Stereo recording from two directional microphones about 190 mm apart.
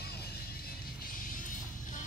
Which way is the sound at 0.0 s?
55° left (ahead or behind).